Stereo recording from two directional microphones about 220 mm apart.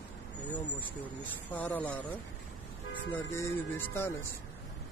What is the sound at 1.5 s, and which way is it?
Music, 10° left (ahead or behind).